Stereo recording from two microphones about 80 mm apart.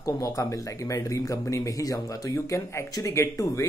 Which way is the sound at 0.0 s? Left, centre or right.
Left.